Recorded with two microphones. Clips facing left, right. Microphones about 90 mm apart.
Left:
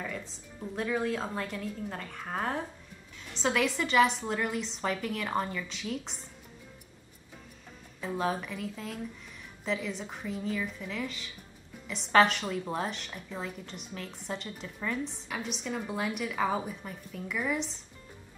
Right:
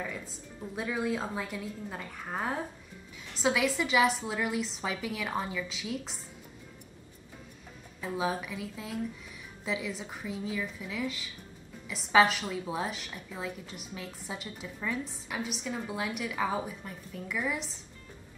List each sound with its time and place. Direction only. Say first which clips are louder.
0.0 s music: even; 5° right (ahead or behind)
0.7 s a woman's voice: left 1 dB; 5° right (ahead or behind)
8.2 s a woman's voice: left 1 dB; 5° right (ahead or behind)